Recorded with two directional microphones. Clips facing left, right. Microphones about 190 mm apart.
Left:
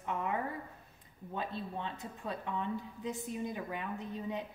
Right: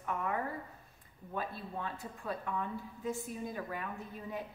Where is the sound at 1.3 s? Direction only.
20° left (ahead or behind).